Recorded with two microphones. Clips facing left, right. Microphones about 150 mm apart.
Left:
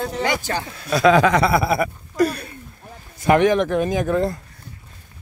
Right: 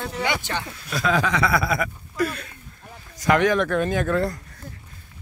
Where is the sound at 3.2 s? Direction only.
25° left (ahead or behind).